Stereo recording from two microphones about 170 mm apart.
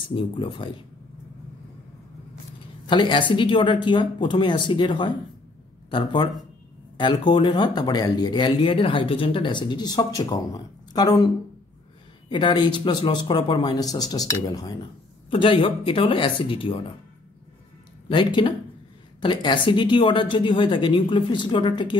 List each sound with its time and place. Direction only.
0.1 s speech: 30° left (ahead or behind)
2.9 s speech: 30° left (ahead or behind)
12.3 s speech: 30° left (ahead or behind)
18.0 s speech: 30° left (ahead or behind)